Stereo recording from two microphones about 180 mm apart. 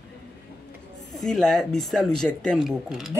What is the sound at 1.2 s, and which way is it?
A man's voice, 5° left (ahead or behind).